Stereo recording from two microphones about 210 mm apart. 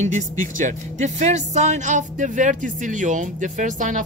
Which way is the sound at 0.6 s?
35° right (ahead or behind).